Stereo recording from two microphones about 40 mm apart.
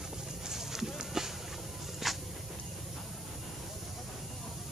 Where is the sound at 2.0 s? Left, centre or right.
Centre.